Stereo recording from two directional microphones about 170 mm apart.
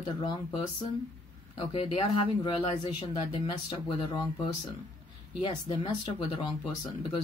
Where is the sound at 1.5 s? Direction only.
35° left (ahead or behind).